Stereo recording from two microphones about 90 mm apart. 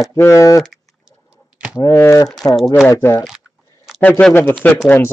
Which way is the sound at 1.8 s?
35° left (ahead or behind).